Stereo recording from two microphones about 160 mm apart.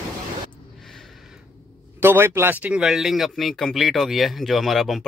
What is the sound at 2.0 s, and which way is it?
A man's voice, 15° right (ahead or behind).